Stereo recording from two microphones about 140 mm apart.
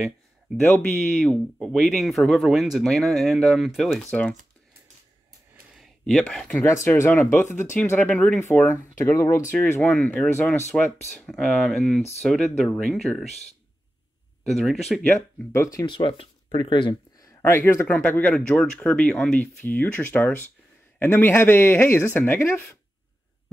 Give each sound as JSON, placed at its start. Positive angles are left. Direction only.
{"t": 0.7, "sound": "speech", "side_deg": 5}
{"t": 5.8, "sound": "speech", "side_deg": 0}
{"t": 6.6, "sound": "speech", "side_deg": 20}
{"t": 13.3, "sound": "speech", "side_deg": 50}
{"t": 14.4, "sound": "speech", "side_deg": 0}
{"t": 15.5, "sound": "speech", "side_deg": 20}
{"t": 15.8, "sound": "speech", "side_deg": 35}